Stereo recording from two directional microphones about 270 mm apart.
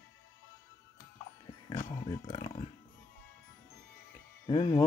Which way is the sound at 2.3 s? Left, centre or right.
Centre.